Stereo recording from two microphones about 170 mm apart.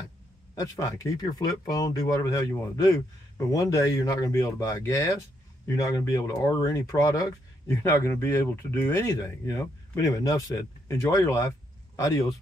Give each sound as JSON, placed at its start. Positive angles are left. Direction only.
{"t": 0.6, "sound": "speech", "side_deg": 20}